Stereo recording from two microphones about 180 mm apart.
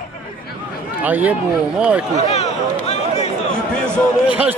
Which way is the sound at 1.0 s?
10° right (ahead or behind).